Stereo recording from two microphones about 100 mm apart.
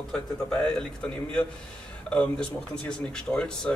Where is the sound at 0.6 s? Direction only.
10° left (ahead or behind).